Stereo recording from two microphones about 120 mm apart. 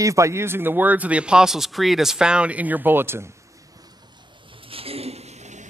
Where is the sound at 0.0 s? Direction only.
25° right (ahead or behind).